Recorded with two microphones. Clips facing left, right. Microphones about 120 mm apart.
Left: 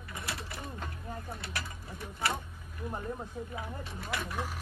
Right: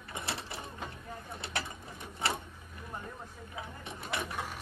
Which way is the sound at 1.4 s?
25° right (ahead or behind).